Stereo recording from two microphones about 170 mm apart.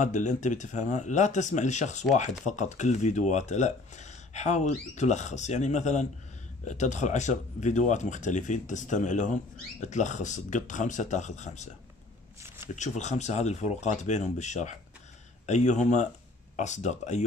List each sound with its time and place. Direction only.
0.0 s speech: 45° left (ahead or behind)
12.7 s speech: 45° left (ahead or behind)